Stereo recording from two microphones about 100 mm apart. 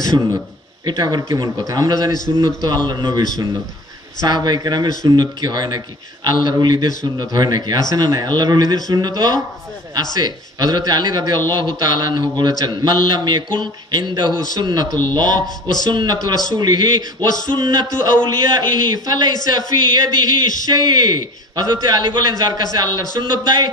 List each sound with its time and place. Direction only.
0.8 s a man's voice: 45° right (ahead or behind)